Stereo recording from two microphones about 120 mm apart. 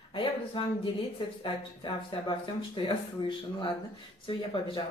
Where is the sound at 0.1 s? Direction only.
45° left (ahead or behind).